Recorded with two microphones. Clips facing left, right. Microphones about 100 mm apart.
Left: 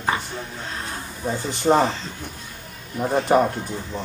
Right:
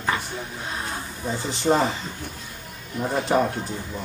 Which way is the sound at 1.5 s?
45° left (ahead or behind).